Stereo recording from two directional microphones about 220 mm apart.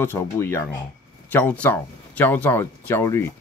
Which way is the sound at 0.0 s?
10° left (ahead or behind).